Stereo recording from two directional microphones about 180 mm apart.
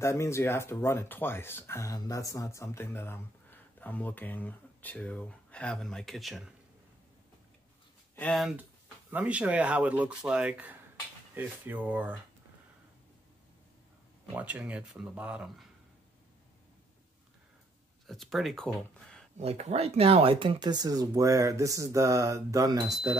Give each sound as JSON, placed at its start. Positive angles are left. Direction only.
{"t": 0.0, "sound": "speech", "side_deg": 15}
{"t": 8.2, "sound": "speech", "side_deg": 0}
{"t": 14.3, "sound": "speech", "side_deg": -10}
{"t": 18.0, "sound": "speech", "side_deg": 0}
{"t": 19.3, "sound": "speech", "side_deg": -40}